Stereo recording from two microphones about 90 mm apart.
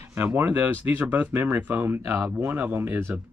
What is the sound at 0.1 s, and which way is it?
Speech, 25° right (ahead or behind).